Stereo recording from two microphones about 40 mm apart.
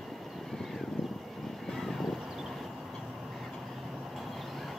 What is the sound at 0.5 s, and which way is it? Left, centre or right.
Vehicle, centre.